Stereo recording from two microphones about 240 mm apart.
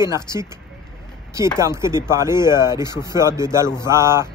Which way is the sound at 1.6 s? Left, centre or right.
Centre.